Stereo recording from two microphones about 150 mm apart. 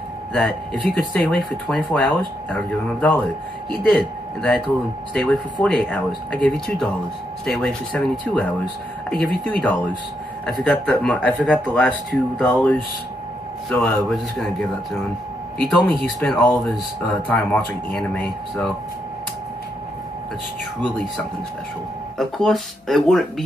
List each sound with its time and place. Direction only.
0.3 s speech: 5° left (ahead or behind)
15.6 s speech: centre (ahead or behind)
22.4 s speech: centre (ahead or behind)